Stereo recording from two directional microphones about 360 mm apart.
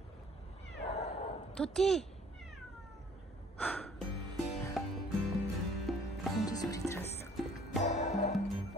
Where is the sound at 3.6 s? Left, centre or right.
Centre.